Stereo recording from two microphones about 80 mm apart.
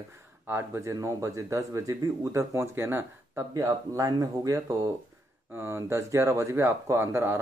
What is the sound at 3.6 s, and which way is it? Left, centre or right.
Speech, right.